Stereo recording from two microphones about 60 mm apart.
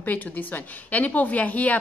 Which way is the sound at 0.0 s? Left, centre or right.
Left.